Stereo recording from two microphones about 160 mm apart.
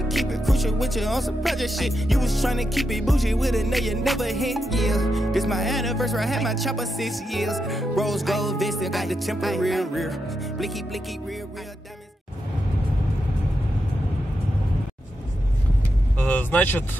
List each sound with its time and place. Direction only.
0.1 s music: centre (ahead or behind)
16.2 s vehicle: 10° left (ahead or behind)